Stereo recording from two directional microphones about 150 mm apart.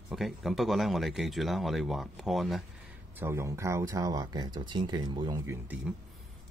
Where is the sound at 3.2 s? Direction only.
15° right (ahead or behind).